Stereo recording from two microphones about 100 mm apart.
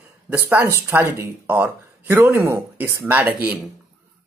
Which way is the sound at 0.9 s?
20° right (ahead or behind).